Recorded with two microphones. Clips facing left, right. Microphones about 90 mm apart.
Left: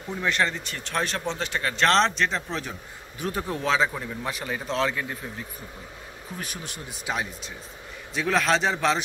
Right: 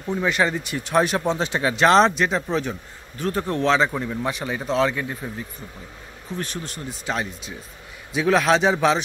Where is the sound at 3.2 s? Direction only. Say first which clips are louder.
Right 6 dB; 5° left (ahead or behind).